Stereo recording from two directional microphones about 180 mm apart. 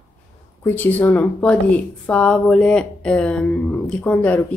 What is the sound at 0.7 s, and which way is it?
Speech, 10° left (ahead or behind).